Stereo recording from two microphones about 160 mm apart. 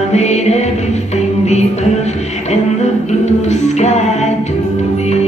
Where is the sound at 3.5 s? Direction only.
45° left (ahead or behind).